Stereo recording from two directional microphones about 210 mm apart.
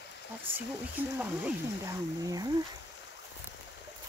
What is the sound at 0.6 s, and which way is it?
Speech, 10° right (ahead or behind).